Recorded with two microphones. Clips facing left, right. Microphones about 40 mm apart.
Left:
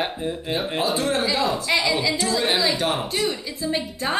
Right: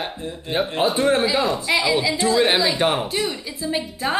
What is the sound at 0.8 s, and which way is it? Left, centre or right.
Speech, right.